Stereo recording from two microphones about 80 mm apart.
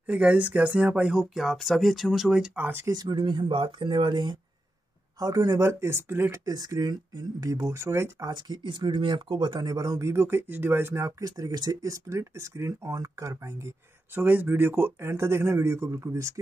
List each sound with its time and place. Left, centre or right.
0.0 s speech: centre
2.5 s speech: right
2.9 s speech: right
3.2 s speech: right
5.2 s speech: right
6.4 s speech: right
8.3 s speech: right
9.8 s speech: right